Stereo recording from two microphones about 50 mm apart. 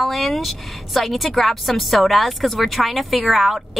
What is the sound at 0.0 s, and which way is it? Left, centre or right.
A woman's voice, centre.